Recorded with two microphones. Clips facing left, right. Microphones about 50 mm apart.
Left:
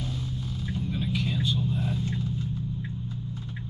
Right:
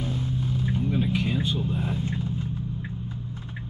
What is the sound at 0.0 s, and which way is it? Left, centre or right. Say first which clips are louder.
Vehicle: right 5 dB; right.